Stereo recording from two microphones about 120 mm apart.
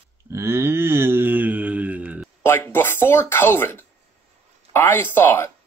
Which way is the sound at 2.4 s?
20° left (ahead or behind).